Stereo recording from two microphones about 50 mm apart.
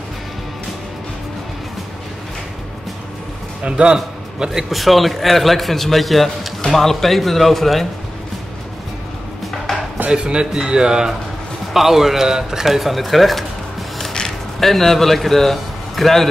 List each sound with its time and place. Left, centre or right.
3.6 s a man's voice: centre
4.7 s speech: centre
9.7 s music: centre
10.0 s a man's voice: right; by 16.3 s centre